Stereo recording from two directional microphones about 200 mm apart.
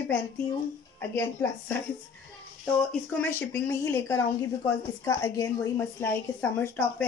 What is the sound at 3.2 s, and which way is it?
A woman's voice, 10° left (ahead or behind).